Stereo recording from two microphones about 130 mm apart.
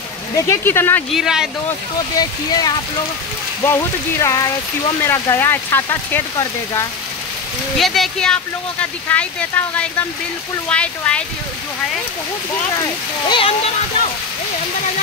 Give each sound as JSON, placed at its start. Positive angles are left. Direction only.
{"t": 0.5, "sound": "speech", "side_deg": 20}
{"t": 1.1, "sound": "speech", "side_deg": -5}
{"t": 2.1, "sound": "speech", "side_deg": 30}
{"t": 7.7, "sound": "speech", "side_deg": 0}
{"t": 12.7, "sound": "speech", "side_deg": 30}